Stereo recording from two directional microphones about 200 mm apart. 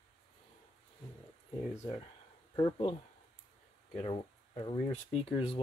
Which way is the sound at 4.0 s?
25° left (ahead or behind).